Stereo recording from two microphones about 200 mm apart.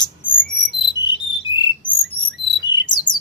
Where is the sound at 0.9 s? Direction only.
20° left (ahead or behind).